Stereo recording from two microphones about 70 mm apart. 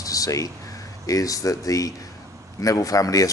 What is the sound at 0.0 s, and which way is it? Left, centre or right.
A man's voice, left.